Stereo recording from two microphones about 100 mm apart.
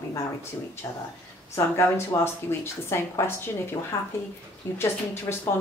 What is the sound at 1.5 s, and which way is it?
Speech, 25° left (ahead or behind).